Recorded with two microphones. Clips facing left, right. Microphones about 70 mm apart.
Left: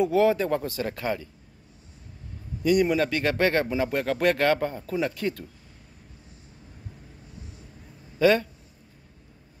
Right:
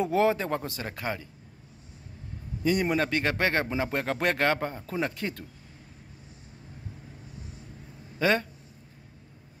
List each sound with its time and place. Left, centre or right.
0.0 s speech: right
2.6 s speech: right
8.2 s speech: right